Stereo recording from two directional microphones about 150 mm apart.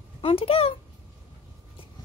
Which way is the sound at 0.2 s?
40° left (ahead or behind).